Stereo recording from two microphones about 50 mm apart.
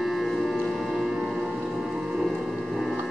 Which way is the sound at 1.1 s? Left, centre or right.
Centre.